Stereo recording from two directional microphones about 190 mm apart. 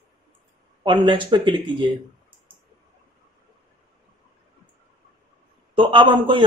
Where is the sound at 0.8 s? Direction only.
25° right (ahead or behind).